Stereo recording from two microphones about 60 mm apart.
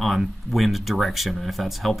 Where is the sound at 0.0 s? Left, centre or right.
Centre.